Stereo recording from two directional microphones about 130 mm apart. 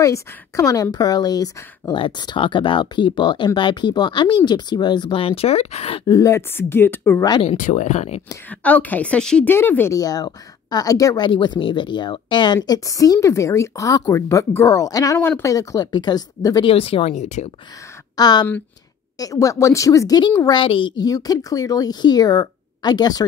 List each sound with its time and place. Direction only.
0.0 s speech: 25° left (ahead or behind); by 6.0 s 50° left (ahead or behind)
6.0 s speech: 25° left (ahead or behind)
7.5 s speech: 75° left (ahead or behind)
8.5 s a woman's voice: 10° left (ahead or behind)
9.9 s speech: 30° left (ahead or behind)
16.6 s speech: 45° left (ahead or behind)
17.1 s speech: 65° left (ahead or behind)
18.1 s speech: 30° left (ahead or behind)